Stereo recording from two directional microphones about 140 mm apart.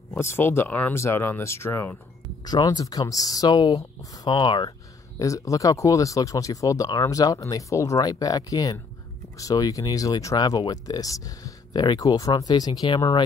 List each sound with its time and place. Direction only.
0.1 s speech: 20° left (ahead or behind)
2.4 s speech: 30° left (ahead or behind)